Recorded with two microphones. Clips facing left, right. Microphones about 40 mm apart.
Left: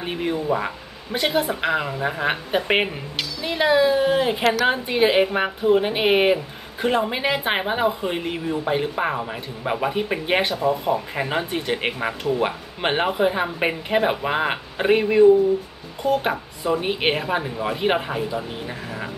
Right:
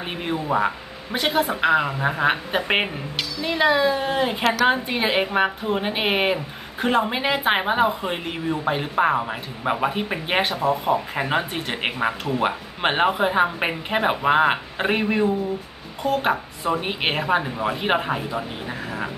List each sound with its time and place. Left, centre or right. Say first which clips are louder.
0.0 s speech: left 2 dB; centre
10.4 s speech: even; right
11.1 s speech: right 1 dB; centre